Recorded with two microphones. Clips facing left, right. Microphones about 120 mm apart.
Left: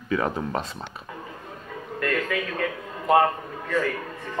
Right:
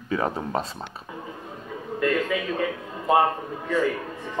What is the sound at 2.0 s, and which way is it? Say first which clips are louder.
A man's voice: right 2 dB; 10° right (ahead or behind).